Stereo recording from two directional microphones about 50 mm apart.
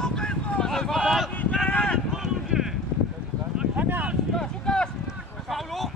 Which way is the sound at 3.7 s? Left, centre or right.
Right.